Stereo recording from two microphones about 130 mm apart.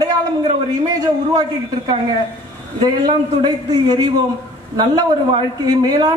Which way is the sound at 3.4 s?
30° right (ahead or behind).